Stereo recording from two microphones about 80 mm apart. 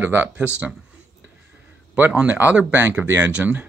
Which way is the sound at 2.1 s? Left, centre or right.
Centre.